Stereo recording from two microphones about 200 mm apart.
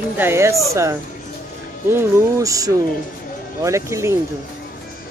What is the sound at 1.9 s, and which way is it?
Speech, 15° right (ahead or behind).